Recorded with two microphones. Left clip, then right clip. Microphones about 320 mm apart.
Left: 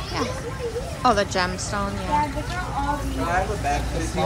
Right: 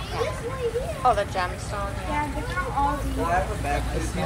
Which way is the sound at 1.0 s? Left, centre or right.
Left.